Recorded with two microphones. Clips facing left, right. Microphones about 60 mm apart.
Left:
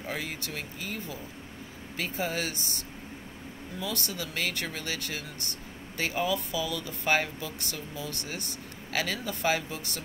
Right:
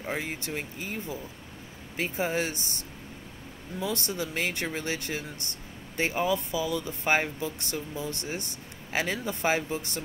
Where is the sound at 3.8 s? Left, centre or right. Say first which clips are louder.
Right 4 dB; right.